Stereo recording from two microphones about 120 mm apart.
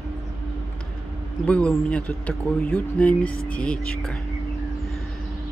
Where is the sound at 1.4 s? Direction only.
10° left (ahead or behind).